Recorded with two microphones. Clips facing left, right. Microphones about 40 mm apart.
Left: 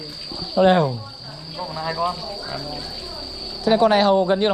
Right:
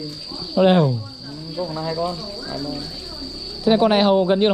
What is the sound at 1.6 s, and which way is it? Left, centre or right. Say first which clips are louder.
Speech: even; centre.